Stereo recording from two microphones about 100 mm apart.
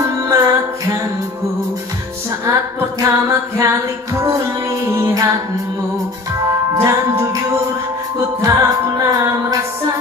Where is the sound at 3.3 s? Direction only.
30° right (ahead or behind).